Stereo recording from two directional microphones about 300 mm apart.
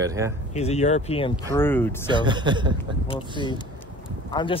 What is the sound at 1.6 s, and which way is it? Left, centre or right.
Speech, centre.